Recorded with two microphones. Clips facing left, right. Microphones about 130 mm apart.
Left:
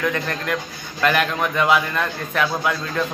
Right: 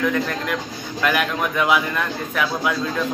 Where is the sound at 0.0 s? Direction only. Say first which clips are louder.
Right 2 dB; 5° right (ahead or behind).